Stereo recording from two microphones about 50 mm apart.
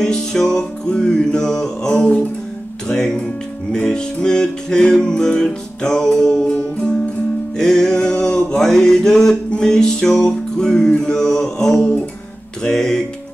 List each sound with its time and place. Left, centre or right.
0.0 s music: centre
3.7 s music: centre